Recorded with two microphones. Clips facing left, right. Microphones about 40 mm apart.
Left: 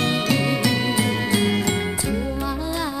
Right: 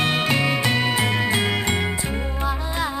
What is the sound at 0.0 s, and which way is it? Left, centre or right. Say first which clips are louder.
Music: right 1 dB; right.